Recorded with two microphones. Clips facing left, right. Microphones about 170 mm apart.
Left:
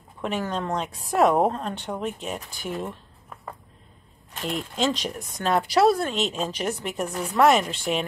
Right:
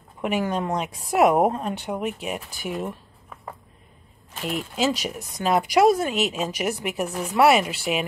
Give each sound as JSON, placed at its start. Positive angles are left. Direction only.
{"t": 0.2, "sound": "speech", "side_deg": -10}